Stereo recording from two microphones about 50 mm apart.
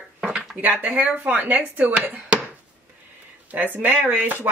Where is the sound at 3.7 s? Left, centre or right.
Right.